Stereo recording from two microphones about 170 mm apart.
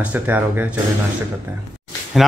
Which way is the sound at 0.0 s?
10° right (ahead or behind).